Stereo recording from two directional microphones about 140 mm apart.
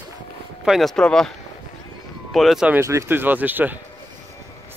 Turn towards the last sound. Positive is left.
turn(degrees=-15)  # may be behind; listen again after turning